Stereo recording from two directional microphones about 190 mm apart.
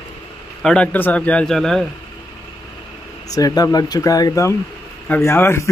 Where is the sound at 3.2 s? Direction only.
20° left (ahead or behind).